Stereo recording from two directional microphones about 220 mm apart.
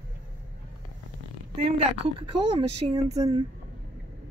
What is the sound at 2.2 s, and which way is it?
Speech, 25° right (ahead or behind).